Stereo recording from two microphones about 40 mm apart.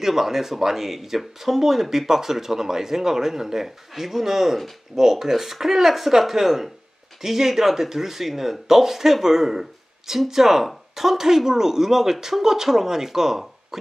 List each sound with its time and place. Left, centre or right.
0.0 s speech: centre